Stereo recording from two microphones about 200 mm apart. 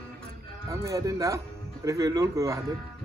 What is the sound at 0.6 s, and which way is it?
Speech, 15° right (ahead or behind).